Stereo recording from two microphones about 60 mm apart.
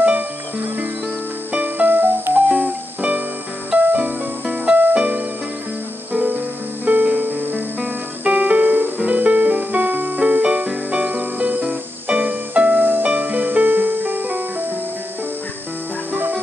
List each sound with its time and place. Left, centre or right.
1.5 s music: right
2.5 s music: centre
6.8 s music: right
16.1 s music: right